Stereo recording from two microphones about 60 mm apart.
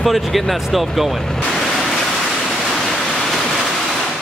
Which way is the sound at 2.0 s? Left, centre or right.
Centre.